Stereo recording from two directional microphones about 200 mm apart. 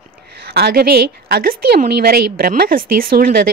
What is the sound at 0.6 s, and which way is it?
A woman's voice, 50° right (ahead or behind).